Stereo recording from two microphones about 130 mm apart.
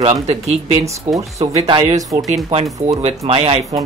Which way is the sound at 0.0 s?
55° right (ahead or behind).